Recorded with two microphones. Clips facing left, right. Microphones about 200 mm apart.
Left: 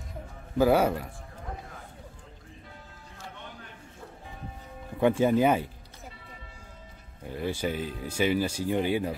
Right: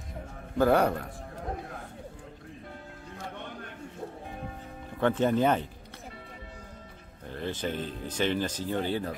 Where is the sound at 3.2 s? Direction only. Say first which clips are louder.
Right 4 dB; 55° right (ahead or behind).